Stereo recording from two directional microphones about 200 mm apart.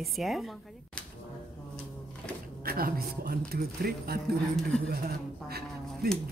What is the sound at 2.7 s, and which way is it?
Speech, 50° right (ahead or behind).